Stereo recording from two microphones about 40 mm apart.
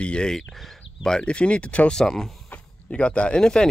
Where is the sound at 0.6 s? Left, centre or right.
Centre.